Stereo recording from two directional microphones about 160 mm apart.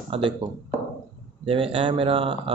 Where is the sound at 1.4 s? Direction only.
35° right (ahead or behind).